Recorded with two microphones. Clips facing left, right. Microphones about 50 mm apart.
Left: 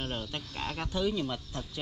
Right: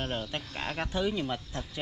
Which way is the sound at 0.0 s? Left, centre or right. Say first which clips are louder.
Right 2 dB; centre.